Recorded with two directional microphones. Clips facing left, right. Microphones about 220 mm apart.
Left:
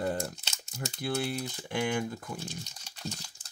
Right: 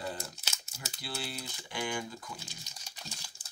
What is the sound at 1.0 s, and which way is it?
Speech, 55° left (ahead or behind).